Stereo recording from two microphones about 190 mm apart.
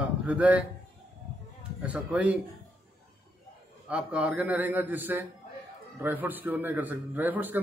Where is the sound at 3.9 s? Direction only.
5° right (ahead or behind).